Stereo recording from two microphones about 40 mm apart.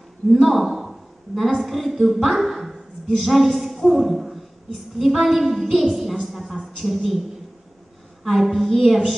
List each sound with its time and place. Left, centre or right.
0.3 s a man's voice: centre
8.2 s a woman's voice: centre